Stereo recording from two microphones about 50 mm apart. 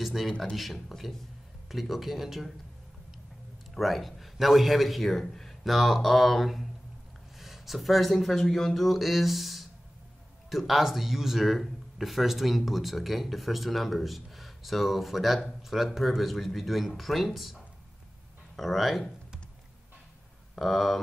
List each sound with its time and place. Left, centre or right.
0.0 s speech: centre
3.7 s speech: centre
18.6 s speech: centre
20.5 s speech: centre